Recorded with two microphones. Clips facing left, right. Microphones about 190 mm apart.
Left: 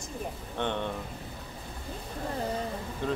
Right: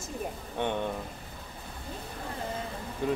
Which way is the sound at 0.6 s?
10° right (ahead or behind).